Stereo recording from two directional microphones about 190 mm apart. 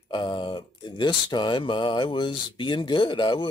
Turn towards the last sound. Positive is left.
turn(degrees=25)  # may be behind; listen again after turning